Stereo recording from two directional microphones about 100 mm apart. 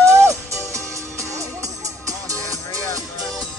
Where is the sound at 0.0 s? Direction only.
30° right (ahead or behind).